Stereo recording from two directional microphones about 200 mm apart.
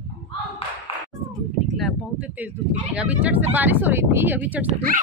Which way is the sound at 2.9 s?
5° right (ahead or behind).